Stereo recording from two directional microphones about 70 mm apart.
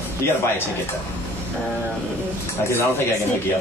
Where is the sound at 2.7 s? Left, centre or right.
Left.